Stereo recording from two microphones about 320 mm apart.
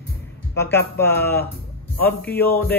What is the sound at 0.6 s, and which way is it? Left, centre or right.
Speech, centre.